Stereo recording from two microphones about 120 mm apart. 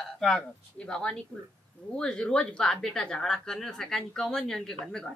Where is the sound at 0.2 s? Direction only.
5° left (ahead or behind).